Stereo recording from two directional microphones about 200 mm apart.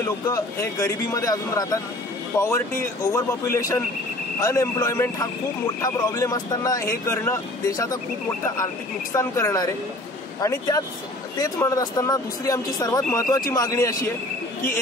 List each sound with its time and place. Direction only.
0.0 s speech: 15° left (ahead or behind)
9.1 s speech: 15° left (ahead or behind)
11.4 s speech: 15° left (ahead or behind)